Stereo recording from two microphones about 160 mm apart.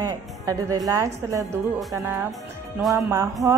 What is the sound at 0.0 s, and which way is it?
Speech, 20° right (ahead or behind).